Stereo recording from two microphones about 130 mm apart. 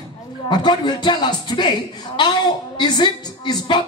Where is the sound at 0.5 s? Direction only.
30° left (ahead or behind).